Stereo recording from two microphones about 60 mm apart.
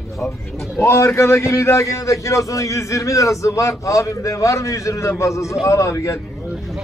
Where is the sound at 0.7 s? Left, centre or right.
Left.